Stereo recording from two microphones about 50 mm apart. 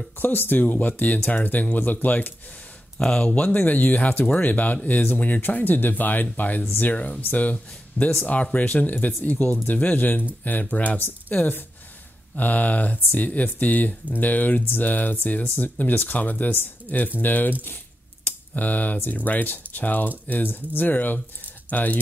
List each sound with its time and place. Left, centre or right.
0.2 s speech: left
3.1 s speech: left
3.5 s speech: left
12.4 s speech: left